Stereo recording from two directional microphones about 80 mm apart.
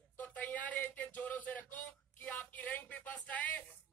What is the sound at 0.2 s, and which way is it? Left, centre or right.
Speech, centre.